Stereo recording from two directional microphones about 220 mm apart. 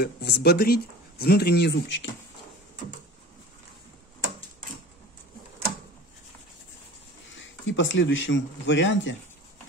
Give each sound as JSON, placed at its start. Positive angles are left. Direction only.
{"t": 0.0, "sound": "speech", "side_deg": 45}
{"t": 7.2, "sound": "speech", "side_deg": 60}